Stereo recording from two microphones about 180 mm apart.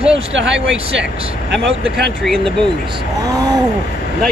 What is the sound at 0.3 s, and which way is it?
Speech, 90° right.